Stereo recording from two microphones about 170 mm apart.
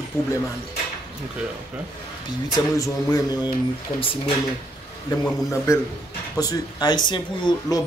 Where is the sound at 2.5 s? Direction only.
20° left (ahead or behind).